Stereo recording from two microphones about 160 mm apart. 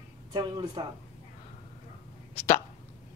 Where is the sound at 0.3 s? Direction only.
25° right (ahead or behind).